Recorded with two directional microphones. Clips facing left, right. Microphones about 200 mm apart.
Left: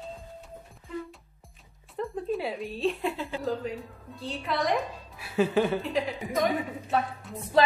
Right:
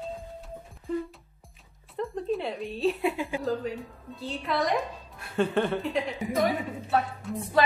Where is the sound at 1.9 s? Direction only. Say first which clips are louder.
Right 1 dB; centre (ahead or behind).